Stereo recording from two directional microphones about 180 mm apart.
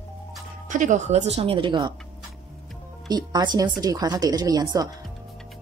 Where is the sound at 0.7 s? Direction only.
45° right (ahead or behind); by 2.0 s 25° right (ahead or behind).